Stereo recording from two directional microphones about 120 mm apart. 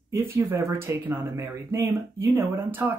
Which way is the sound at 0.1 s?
25° right (ahead or behind).